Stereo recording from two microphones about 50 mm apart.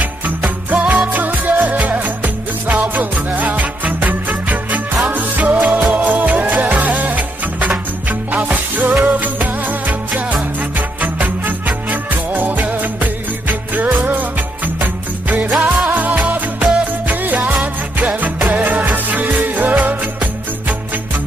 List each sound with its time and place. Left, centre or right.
0.0 s music: right